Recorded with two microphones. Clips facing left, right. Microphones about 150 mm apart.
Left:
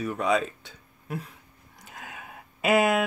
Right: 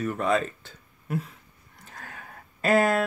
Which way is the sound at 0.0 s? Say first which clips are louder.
Even; centre (ahead or behind).